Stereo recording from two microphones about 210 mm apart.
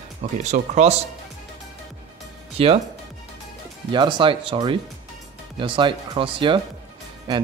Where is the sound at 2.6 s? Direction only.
30° right (ahead or behind).